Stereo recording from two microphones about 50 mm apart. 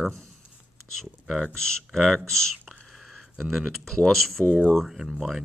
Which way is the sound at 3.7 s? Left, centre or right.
Centre.